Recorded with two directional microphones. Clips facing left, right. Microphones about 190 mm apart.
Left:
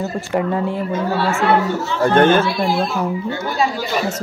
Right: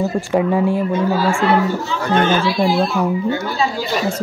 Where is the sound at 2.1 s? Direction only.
55° left (ahead or behind).